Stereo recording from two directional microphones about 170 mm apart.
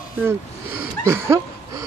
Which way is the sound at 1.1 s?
15° right (ahead or behind).